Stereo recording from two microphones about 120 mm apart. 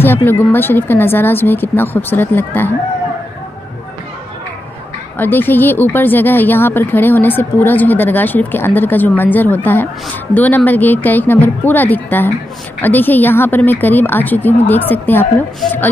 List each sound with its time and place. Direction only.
0.0 s a woman's voice: 20° left (ahead or behind)
5.1 s a woman's voice: 15° left (ahead or behind)